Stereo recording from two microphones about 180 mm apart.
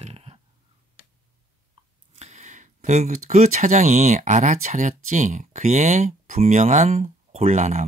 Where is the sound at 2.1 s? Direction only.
40° right (ahead or behind).